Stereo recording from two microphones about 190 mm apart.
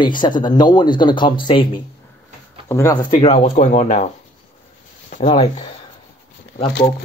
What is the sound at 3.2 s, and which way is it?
Speech, 35° left (ahead or behind).